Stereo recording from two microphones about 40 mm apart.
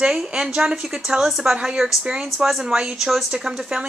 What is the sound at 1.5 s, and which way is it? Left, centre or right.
Speech, right.